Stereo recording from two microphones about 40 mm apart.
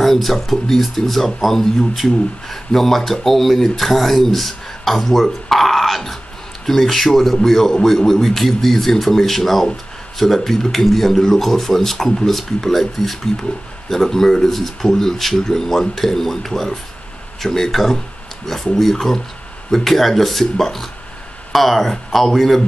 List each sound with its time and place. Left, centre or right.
0.0 s speech: centre